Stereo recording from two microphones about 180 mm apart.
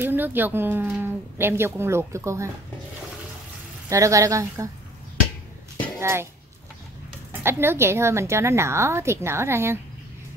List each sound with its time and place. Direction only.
0.0 s speech: 10° right (ahead or behind)
3.9 s speech: 15° right (ahead or behind)
5.9 s speech: 15° right (ahead or behind)
7.4 s speech: 15° right (ahead or behind)